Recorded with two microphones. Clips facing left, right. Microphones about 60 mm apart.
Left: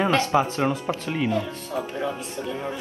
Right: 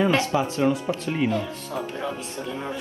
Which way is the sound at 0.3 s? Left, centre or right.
Left.